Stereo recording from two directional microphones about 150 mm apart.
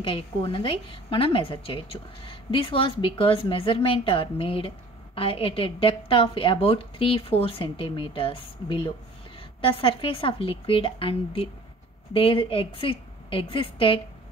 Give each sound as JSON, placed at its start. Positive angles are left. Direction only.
{"t": 0.0, "sound": "a woman's voice", "side_deg": 35}